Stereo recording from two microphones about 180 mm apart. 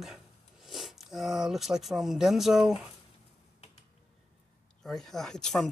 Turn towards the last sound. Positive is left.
turn(degrees=5)  # may be behind; listen again after turning